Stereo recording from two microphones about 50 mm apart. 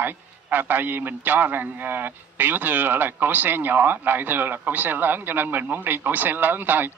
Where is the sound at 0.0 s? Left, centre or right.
Right.